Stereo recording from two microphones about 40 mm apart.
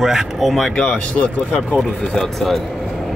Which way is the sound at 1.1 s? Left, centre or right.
Left.